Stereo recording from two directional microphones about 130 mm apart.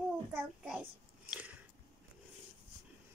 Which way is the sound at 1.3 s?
10° right (ahead or behind).